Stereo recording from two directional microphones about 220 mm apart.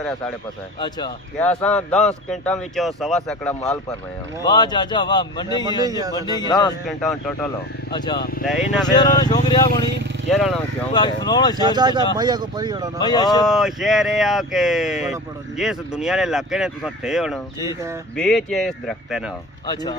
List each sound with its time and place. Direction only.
0.7 s a man's voice: 20° left (ahead or behind)
1.4 s speech: 5° left (ahead or behind)
4.4 s a man's voice: 20° left (ahead or behind)
5.9 s speech: 15° right (ahead or behind)
6.1 s a man's voice: 20° left (ahead or behind)
7.0 s speech: 5° left (ahead or behind)
7.9 s a man's voice: 20° left (ahead or behind)
10.3 s speech: centre (ahead or behind)
10.9 s a man's voice: 20° left (ahead or behind)
11.6 s speech: 20° right (ahead or behind)
13.0 s speech: 20° left (ahead or behind)
13.5 s speech: centre (ahead or behind)
19.7 s a man's voice: 20° left (ahead or behind)